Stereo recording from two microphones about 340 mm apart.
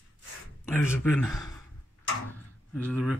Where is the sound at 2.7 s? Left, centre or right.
Centre.